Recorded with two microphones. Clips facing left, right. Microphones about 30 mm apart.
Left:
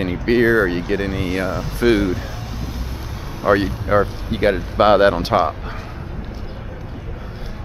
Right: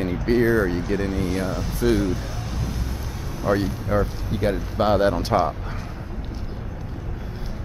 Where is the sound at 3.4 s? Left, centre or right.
Left.